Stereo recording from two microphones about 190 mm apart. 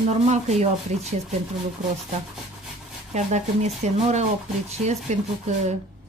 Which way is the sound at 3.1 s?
35° right (ahead or behind).